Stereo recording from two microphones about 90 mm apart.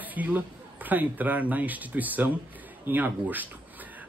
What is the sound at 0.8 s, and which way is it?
Speech, 20° right (ahead or behind).